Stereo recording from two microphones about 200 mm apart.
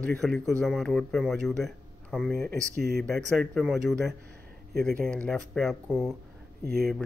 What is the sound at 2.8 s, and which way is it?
Speech, 50° right (ahead or behind).